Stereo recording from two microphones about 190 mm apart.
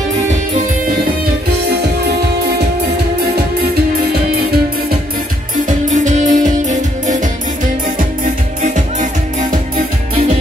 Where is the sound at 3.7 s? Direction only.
55° right (ahead or behind).